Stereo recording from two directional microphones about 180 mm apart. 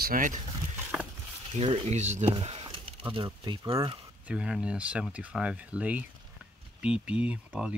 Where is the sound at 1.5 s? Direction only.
35° right (ahead or behind).